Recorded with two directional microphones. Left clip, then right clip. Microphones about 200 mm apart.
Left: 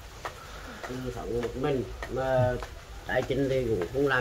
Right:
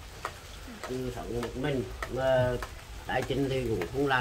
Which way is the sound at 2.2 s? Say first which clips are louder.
Even; 10° left (ahead or behind).